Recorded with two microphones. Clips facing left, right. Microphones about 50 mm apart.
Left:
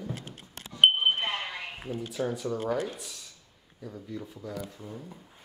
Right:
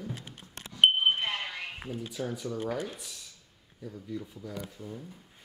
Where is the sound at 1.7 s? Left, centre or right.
Centre.